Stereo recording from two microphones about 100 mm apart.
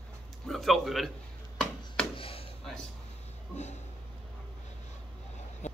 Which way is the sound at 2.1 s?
65° left (ahead or behind).